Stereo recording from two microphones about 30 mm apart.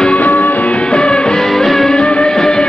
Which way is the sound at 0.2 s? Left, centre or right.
Left.